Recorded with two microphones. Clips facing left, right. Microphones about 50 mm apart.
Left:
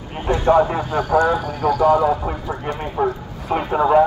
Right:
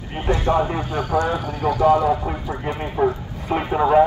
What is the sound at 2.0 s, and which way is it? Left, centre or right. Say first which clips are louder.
Speech: left 1 dB; centre.